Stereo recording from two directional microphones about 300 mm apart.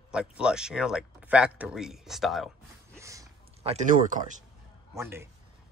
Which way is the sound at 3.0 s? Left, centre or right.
Centre.